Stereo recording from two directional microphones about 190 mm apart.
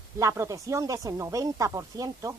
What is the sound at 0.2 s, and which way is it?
Speech, 15° right (ahead or behind).